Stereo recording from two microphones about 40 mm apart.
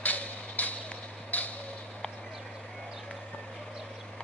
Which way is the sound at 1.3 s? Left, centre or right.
Left.